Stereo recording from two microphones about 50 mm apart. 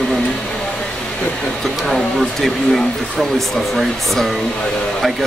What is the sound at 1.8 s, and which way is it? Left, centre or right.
Speech, centre.